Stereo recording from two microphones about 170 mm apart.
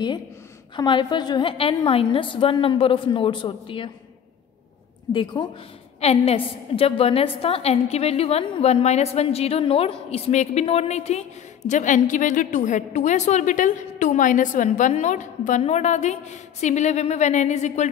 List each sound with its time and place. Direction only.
0.7 s a woman's voice: 25° left (ahead or behind)
5.1 s a woman's voice: 25° left (ahead or behind)
5.9 s a woman's voice: 35° left (ahead or behind)